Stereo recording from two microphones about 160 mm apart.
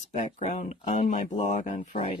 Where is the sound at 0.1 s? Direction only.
45° left (ahead or behind).